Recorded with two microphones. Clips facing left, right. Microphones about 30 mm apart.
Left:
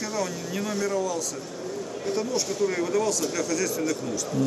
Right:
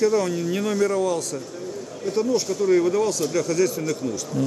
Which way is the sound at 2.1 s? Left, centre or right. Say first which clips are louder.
Right 6 dB; centre.